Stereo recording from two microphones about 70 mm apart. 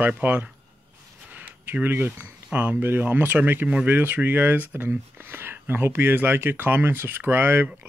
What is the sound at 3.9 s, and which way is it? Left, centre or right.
Speech, right.